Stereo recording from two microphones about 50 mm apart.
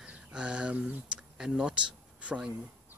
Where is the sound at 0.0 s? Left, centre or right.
Centre.